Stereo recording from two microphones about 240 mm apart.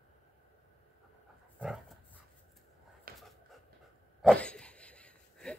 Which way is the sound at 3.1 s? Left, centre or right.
Right.